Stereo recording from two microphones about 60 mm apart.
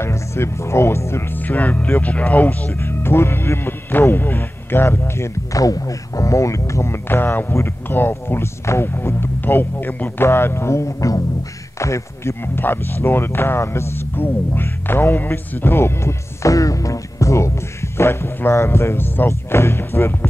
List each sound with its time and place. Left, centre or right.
0.0 s speech: left
1.3 s speech: left
2.8 s speech: left
7.1 s speech: left
11.8 s speech: left
12.5 s speech: left
17.9 s speech: left